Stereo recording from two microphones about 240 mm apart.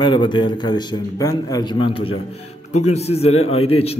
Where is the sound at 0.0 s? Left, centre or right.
Centre.